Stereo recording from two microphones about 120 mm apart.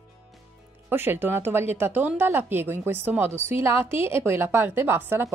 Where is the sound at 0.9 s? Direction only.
20° right (ahead or behind).